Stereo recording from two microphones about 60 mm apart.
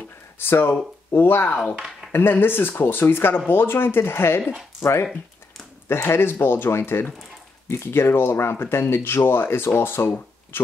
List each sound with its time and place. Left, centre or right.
0.4 s speech: left
5.9 s speech: left